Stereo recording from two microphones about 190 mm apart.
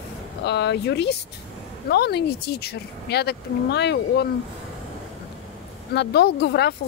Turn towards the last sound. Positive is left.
turn(degrees=60)  # may be behind; listen again after turning